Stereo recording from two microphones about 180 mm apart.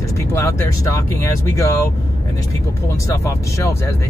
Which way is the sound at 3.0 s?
15° left (ahead or behind).